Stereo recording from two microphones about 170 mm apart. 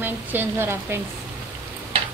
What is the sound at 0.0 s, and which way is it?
Speech, 10° right (ahead or behind).